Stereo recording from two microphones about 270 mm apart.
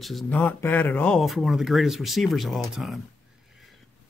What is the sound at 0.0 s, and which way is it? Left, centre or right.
Speech, centre.